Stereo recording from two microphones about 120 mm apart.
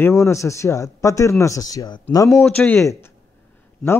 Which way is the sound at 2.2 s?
Centre (ahead or behind).